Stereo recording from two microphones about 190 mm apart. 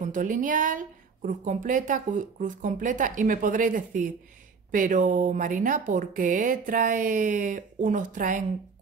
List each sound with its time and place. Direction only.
0.0 s a woman's voice: 45° right (ahead or behind)